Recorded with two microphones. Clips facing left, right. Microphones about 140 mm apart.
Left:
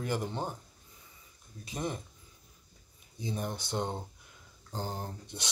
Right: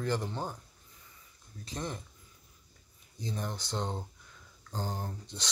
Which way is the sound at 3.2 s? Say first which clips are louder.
Left 2 dB; 15° left (ahead or behind).